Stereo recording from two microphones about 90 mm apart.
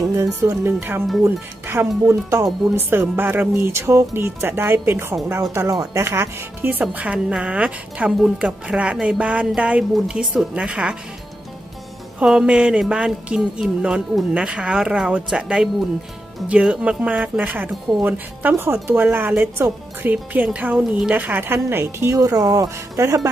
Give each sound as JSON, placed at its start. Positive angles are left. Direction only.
{"t": 0.0, "sound": "music", "side_deg": -40}
{"t": 0.5, "sound": "speech", "side_deg": -30}
{"t": 2.7, "sound": "speech", "side_deg": -25}
{"t": 5.4, "sound": "speech", "side_deg": -40}
{"t": 6.0, "sound": "music", "side_deg": -30}
{"t": 12.2, "sound": "music", "side_deg": -10}
{"t": 18.0, "sound": "speech", "side_deg": -20}
{"t": 22.1, "sound": "speech", "side_deg": -40}